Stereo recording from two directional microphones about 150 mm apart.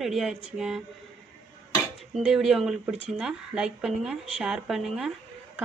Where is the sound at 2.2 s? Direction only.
5° right (ahead or behind).